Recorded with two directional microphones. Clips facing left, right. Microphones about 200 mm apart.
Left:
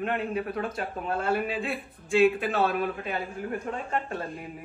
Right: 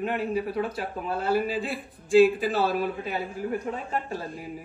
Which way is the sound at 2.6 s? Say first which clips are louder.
Right 1 dB; 5° right (ahead or behind).